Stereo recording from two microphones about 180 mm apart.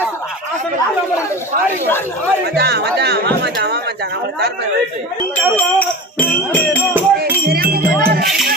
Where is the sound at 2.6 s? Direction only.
65° right (ahead or behind).